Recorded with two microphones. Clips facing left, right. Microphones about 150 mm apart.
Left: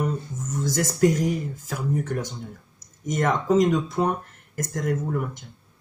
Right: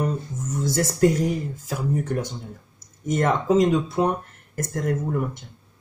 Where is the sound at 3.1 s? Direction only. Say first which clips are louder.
Right 2 dB; 30° right (ahead or behind).